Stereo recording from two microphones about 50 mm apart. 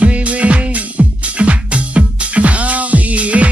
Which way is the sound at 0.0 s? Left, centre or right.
Right.